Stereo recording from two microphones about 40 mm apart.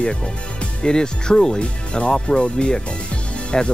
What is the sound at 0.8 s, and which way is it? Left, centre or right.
Speech, centre.